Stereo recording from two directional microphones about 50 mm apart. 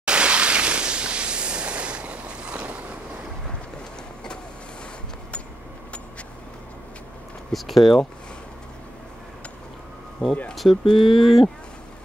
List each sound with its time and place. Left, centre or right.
0.0 s a sound: centre
7.5 s speech: centre
10.5 s speech: centre